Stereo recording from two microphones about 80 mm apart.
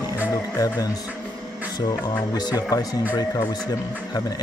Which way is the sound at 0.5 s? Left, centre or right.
Left.